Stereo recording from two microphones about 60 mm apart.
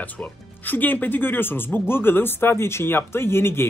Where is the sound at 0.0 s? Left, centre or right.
Left.